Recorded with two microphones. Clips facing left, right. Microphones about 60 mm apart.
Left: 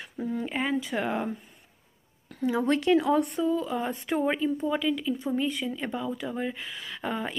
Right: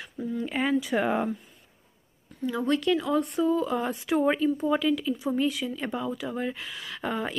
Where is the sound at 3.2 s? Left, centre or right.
Centre.